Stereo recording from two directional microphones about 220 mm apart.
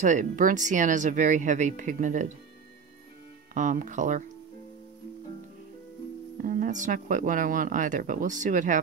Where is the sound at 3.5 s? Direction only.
35° right (ahead or behind).